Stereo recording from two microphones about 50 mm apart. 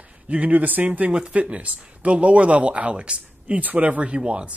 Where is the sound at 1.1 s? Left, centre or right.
Right.